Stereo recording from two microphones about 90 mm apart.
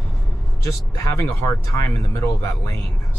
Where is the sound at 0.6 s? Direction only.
35° left (ahead or behind).